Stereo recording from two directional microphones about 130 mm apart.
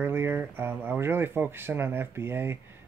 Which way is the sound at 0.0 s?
15° right (ahead or behind).